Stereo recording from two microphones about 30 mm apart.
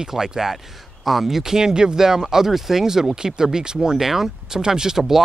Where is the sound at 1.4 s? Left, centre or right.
Centre.